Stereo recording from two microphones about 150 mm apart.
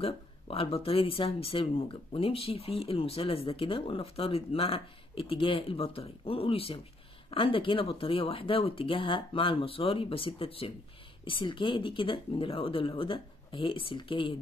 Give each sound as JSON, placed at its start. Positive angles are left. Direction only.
{"t": 0.0, "sound": "speech", "side_deg": 40}